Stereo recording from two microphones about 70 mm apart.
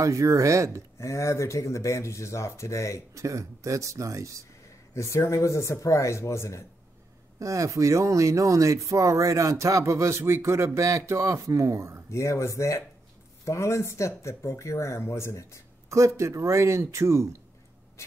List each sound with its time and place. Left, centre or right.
0.0 s speech: right
0.9 s speech: left
3.2 s speech: right
4.9 s speech: left
7.3 s speech: right
12.1 s speech: left
16.2 s speech: right